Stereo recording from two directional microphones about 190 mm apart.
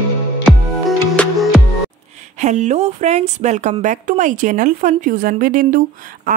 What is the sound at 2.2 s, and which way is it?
A woman's voice, 40° right (ahead or behind).